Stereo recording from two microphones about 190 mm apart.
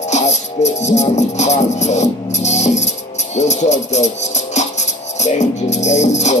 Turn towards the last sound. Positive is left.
turn(degrees=35)  # may be behind; listen again after turning